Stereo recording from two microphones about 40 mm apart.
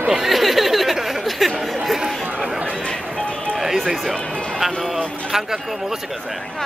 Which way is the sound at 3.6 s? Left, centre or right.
Centre.